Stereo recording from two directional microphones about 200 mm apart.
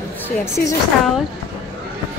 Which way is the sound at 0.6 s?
50° left (ahead or behind).